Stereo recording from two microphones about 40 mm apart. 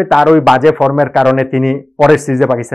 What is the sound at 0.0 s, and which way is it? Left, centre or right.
Speech, centre.